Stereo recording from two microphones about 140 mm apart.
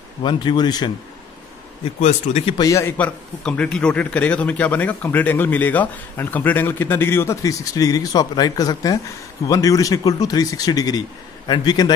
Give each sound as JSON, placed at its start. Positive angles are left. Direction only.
{"t": 0.2, "sound": "a man's voice", "side_deg": 35}
{"t": 2.0, "sound": "speech", "side_deg": 55}
{"t": 2.4, "sound": "a man's voice", "side_deg": 35}
{"t": 2.7, "sound": "a man's voice", "side_deg": 15}
{"t": 3.4, "sound": "a man's voice", "side_deg": 5}